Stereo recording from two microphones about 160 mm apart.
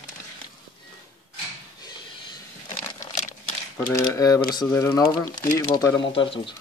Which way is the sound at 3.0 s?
50° left (ahead or behind).